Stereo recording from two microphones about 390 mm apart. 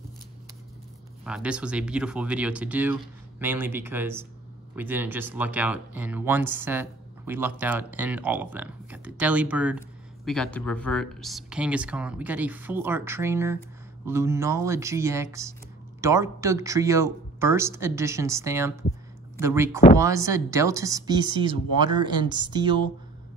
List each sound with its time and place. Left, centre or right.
1.2 s speech: centre